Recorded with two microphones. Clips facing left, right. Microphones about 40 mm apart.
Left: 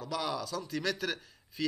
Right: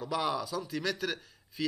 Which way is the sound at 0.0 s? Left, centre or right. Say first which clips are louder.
Right 3 dB; centre.